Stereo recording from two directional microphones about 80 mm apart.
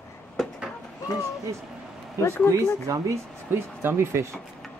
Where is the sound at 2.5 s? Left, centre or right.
Right.